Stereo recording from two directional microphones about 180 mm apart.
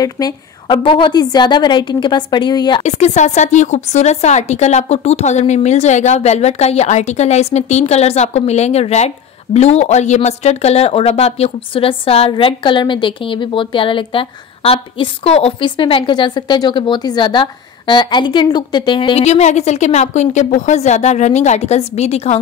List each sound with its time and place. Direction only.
0.0 s a woman's voice: 25° left (ahead or behind)
2.8 s speech: 40° left (ahead or behind)